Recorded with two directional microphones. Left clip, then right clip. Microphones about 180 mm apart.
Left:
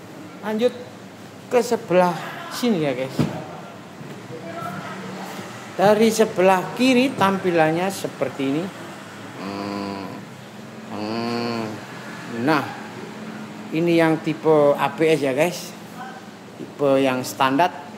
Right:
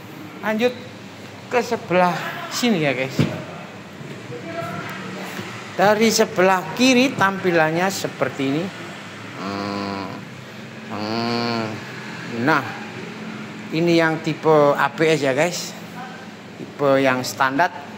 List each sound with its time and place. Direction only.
0.4 s a man's voice: 5° left (ahead or behind)
1.5 s a man's voice: 30° left (ahead or behind)
2.0 s speech: 10° left (ahead or behind)
5.8 s a woman's voice: 5° left (ahead or behind)
9.4 s vehicle: 10° left (ahead or behind)
11.0 s a sound: 15° left (ahead or behind)
13.7 s a woman's voice: 10° left (ahead or behind)
16.8 s a man's voice: 20° left (ahead or behind)